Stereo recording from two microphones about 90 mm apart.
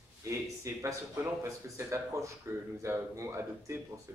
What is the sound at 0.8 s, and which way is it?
Speech, 30° right (ahead or behind).